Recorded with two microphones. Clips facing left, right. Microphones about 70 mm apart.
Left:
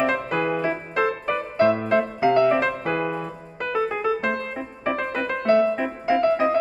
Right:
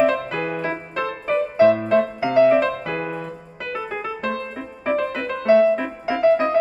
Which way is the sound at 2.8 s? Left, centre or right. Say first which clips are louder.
Left 2 dB; left.